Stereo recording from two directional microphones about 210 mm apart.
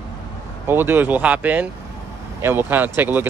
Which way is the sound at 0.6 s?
10° right (ahead or behind).